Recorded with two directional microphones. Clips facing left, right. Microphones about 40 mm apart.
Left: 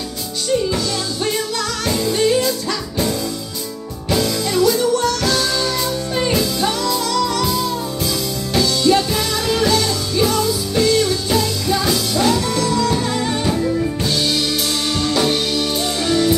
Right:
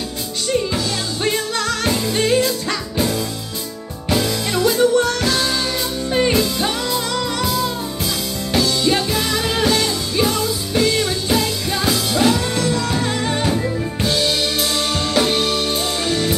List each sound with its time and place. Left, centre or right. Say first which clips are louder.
2.1 s music: left 1 dB; right
4.5 s music: right 1 dB; right
5.2 s music: left 1 dB; centre
8.5 s music: left 2 dB; centre
12.5 s music: left 2 dB; right
14.1 s music: right 3 dB; right